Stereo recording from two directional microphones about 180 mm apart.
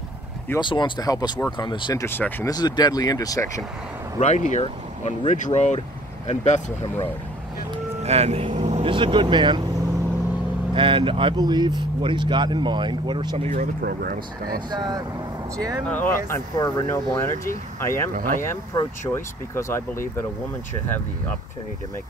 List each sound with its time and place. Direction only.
0.6 s speech: 25° left (ahead or behind)
2.0 s speech: 10° left (ahead or behind)
2.5 s speech: 20° left (ahead or behind)
4.2 s speech: 40° left (ahead or behind)
8.0 s speech: 35° right (ahead or behind)
10.7 s speech: 30° right (ahead or behind)
13.5 s speech: 50° right (ahead or behind)
14.7 s speech: 20° right (ahead or behind)
15.9 s speech: 10° left (ahead or behind)
18.1 s speech: 50° right (ahead or behind)
18.4 s speech: 15° left (ahead or behind)